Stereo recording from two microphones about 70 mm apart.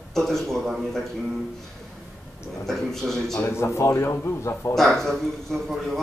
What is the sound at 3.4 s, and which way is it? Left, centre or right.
A man's voice, left.